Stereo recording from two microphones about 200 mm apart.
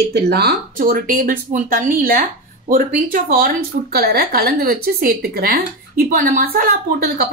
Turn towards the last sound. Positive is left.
turn(degrees=-50)  # may be behind; listen again after turning